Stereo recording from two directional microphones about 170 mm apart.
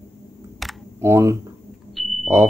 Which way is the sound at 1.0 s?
15° right (ahead or behind).